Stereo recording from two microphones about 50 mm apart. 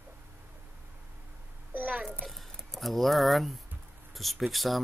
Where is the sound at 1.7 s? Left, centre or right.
Right.